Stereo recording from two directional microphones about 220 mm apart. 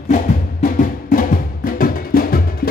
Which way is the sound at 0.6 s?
40° left (ahead or behind).